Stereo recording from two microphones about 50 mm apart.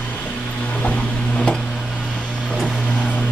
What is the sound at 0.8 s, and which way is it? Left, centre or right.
Vehicle, left.